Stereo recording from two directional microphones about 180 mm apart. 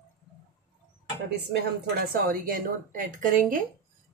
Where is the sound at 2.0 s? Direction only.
50° right (ahead or behind).